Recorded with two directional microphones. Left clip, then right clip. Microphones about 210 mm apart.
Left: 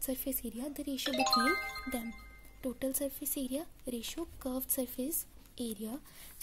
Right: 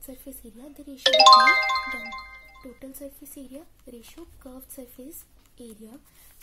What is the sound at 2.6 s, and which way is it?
A woman's voice, 45° left (ahead or behind).